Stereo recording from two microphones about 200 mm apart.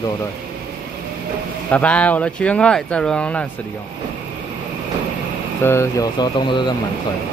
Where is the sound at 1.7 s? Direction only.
5° left (ahead or behind).